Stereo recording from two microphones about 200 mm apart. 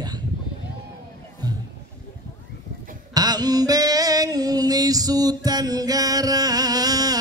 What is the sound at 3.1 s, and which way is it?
Music, 20° right (ahead or behind).